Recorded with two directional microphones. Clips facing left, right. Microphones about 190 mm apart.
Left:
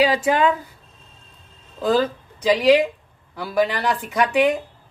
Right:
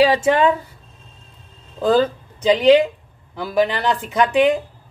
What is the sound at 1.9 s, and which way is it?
A woman's voice, 25° right (ahead or behind).